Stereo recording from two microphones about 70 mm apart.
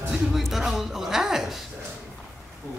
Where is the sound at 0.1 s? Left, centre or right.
Centre.